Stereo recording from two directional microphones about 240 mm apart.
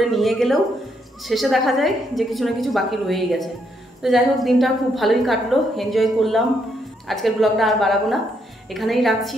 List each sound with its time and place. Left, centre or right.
0.0 s a woman's voice: centre